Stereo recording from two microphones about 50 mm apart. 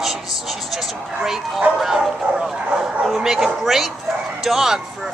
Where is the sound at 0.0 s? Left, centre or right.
Centre.